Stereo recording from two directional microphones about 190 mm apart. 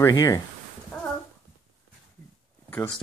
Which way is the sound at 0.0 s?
20° left (ahead or behind).